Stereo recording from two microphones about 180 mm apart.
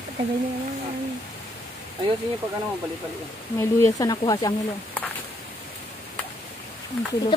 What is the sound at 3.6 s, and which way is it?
Speech, 15° left (ahead or behind).